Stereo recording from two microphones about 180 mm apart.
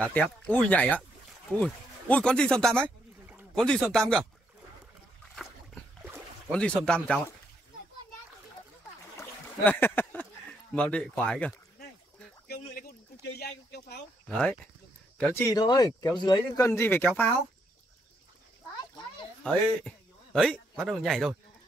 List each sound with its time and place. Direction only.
0.0 s speech: 10° left (ahead or behind)
6.5 s speech: 5° left (ahead or behind)
9.1 s boat: 15° left (ahead or behind)
10.7 s speech: 5° left (ahead or behind)
12.4 s a sound: 55° left (ahead or behind)
14.3 s speech: 5° left (ahead or behind)
15.4 s speech: 20° left (ahead or behind)
18.8 s a sound: 25° left (ahead or behind)
19.4 s speech: 5° left (ahead or behind)